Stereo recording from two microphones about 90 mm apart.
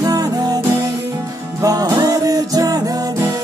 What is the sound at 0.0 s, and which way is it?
Music, 45° right (ahead or behind).